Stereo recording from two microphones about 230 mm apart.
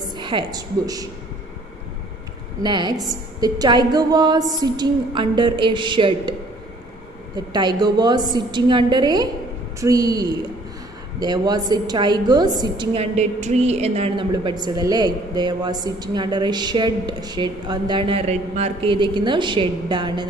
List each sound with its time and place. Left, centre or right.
0.2 s a woman's voice: right
2.6 s a woman's voice: centre
7.3 s a woman's voice: centre